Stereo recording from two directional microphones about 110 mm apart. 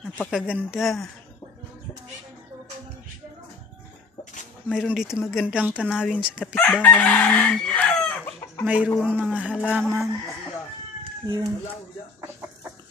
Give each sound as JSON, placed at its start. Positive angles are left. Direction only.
{"t": 0.2, "sound": "speech", "side_deg": -5}
{"t": 4.7, "sound": "speech", "side_deg": -5}
{"t": 6.5, "sound": "chicken", "side_deg": 15}
{"t": 8.6, "sound": "speech", "side_deg": -10}
{"t": 11.2, "sound": "speech", "side_deg": -35}